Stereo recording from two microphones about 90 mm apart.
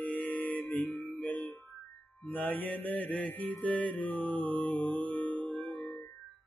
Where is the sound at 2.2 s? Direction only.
20° left (ahead or behind).